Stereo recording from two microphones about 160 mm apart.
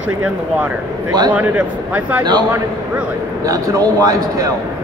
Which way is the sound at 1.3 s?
10° right (ahead or behind).